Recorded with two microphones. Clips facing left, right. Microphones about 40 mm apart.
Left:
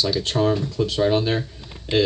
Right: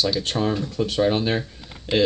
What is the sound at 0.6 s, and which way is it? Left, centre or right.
Speech, right.